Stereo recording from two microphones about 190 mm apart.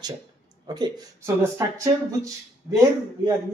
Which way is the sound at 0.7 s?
20° right (ahead or behind).